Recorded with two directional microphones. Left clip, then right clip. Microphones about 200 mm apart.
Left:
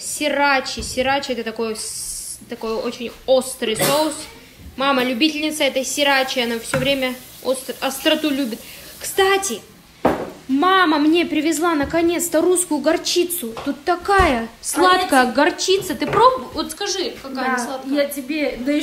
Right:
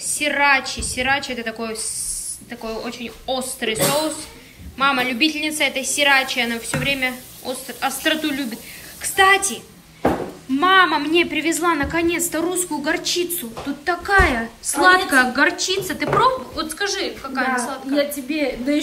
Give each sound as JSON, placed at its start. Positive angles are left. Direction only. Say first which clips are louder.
{"t": 0.0, "sound": "a woman's voice", "louder": "even", "side_deg": 0}
{"t": 10.6, "sound": "a woman's voice", "louder": "even", "side_deg": 5}
{"t": 17.9, "sound": "a woman's voice", "louder": "even", "side_deg": 0}